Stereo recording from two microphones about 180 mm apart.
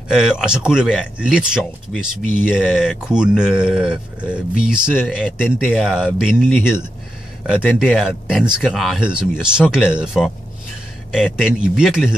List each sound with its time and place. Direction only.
0.1 s speech: 5° right (ahead or behind)
5.4 s speech: 10° left (ahead or behind)
5.8 s speech: 5° right (ahead or behind)
6.4 s speech: 10° left (ahead or behind)
7.4 s speech: 5° right (ahead or behind)
11.7 s speech: 5° right (ahead or behind)